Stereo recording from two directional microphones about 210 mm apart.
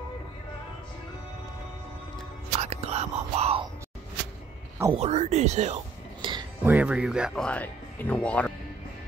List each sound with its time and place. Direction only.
2.6 s whispering: 30° right (ahead or behind)
4.9 s speech: 30° right (ahead or behind)
6.2 s a sound: 25° right (ahead or behind)
6.6 s speech: 5° right (ahead or behind)